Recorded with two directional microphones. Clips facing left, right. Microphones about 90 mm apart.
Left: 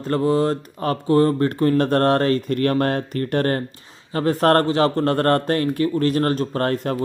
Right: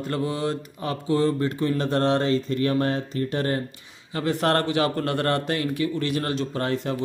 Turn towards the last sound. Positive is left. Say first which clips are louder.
# left 4 dB
turn(degrees=50)  # may be behind; listen again after turning